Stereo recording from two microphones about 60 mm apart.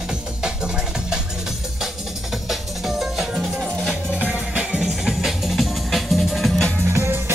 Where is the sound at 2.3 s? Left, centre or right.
Centre.